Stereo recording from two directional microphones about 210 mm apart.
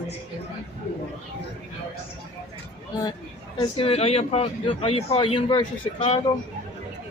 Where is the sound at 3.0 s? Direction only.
20° left (ahead or behind).